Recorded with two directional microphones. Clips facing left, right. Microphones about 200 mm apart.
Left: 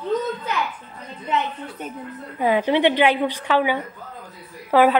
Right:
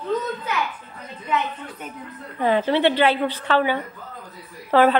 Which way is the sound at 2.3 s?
10° left (ahead or behind).